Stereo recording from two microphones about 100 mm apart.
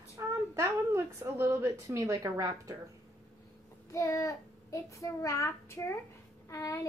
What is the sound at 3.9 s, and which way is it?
A child's voice, 35° left (ahead or behind).